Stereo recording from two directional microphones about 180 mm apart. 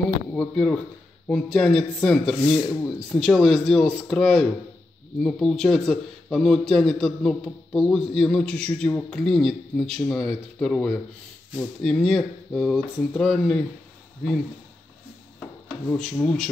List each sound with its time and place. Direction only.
0.3 s speech: 5° left (ahead or behind)
15.9 s speech: 5° left (ahead or behind)